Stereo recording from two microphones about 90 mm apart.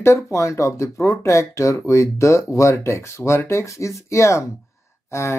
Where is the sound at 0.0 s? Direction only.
35° left (ahead or behind).